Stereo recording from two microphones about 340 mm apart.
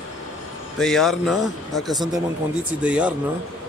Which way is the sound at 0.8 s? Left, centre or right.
Centre.